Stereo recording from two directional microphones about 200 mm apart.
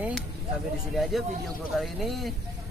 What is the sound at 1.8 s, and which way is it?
Speech, centre (ahead or behind).